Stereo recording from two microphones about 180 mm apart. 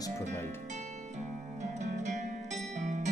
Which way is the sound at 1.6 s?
40° right (ahead or behind).